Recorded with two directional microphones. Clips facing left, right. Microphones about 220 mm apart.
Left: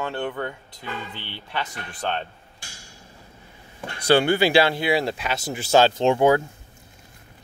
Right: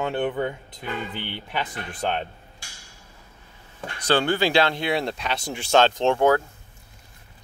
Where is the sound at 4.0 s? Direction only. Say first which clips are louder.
Left 3 dB; 10° left (ahead or behind).